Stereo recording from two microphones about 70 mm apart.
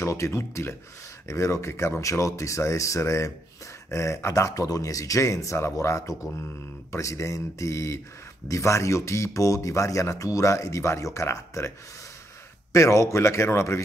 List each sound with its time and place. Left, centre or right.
0.0 s speech: left
12.7 s speech: left